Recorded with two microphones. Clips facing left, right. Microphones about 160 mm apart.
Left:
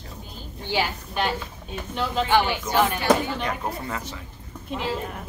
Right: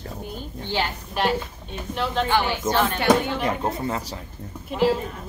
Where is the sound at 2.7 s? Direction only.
10° left (ahead or behind).